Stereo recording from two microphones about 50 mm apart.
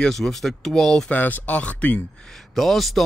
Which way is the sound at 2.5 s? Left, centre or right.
Centre.